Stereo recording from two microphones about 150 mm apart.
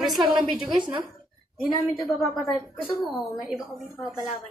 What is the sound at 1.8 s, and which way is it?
A woman's voice, centre (ahead or behind).